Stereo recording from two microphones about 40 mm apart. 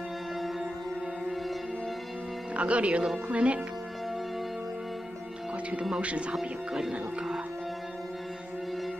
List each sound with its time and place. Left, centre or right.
2.5 s a man's voice: right
5.9 s a man's voice: right
6.3 s speech: centre